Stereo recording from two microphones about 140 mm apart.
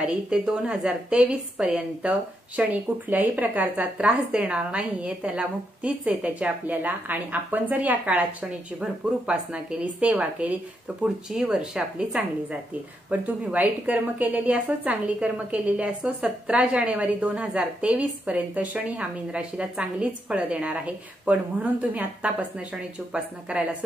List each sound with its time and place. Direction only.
0.0 s speech: 5° right (ahead or behind)
23.5 s speech: 10° right (ahead or behind)